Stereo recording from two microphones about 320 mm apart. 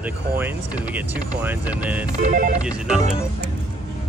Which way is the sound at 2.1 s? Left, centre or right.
Right.